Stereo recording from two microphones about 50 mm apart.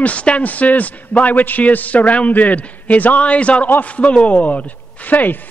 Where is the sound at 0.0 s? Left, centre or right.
Left.